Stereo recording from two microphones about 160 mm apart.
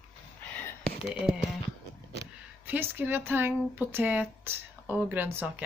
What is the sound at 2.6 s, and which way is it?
Speech, 15° right (ahead or behind).